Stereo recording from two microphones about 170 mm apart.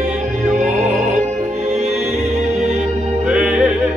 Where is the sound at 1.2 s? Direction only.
45° right (ahead or behind).